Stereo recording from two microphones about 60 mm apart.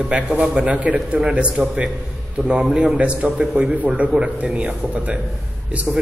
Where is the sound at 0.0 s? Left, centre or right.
Right.